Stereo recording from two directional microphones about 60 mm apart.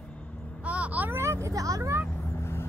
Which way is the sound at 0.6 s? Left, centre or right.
Right.